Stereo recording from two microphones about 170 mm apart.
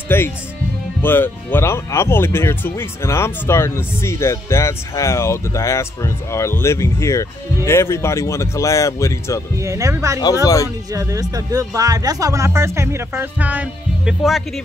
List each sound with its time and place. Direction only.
0.1 s speech: 15° left (ahead or behind)
9.6 s speech: 20° right (ahead or behind)
10.4 s speech: 20° left (ahead or behind)
10.9 s speech: 20° right (ahead or behind); by 14.4 s centre (ahead or behind)